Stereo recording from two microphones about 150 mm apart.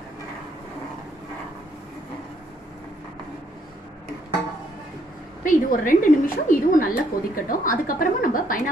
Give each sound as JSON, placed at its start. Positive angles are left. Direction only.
{"t": 5.4, "sound": "a woman's voice", "side_deg": 65}